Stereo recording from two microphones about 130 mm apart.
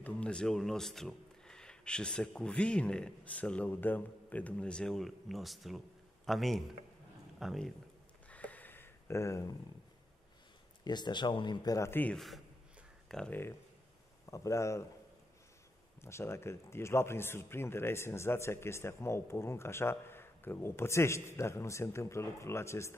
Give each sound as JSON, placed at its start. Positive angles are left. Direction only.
{"t": 0.0, "sound": "a man's voice", "side_deg": 10}
{"t": 8.3, "sound": "a sound", "side_deg": 10}
{"t": 10.8, "sound": "speech", "side_deg": 35}
{"t": 14.3, "sound": "a man's voice", "side_deg": 25}
{"t": 16.0, "sound": "a man's voice", "side_deg": 20}